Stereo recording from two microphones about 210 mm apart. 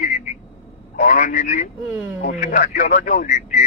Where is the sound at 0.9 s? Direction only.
40° left (ahead or behind).